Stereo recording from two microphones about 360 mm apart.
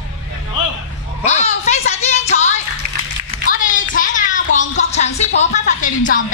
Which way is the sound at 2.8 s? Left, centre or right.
Right.